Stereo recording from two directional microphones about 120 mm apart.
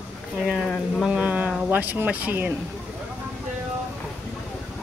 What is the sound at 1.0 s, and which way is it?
Speech, 10° right (ahead or behind).